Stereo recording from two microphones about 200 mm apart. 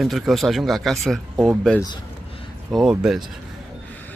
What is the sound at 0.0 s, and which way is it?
Speech, centre (ahead or behind).